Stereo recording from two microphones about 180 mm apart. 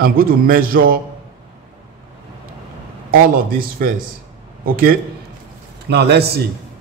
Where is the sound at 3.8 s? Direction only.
55° right (ahead or behind).